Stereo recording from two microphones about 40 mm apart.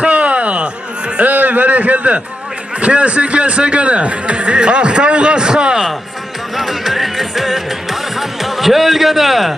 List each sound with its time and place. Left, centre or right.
0.0 s a sound: right
1.2 s a man's voice: right
6.5 s music: centre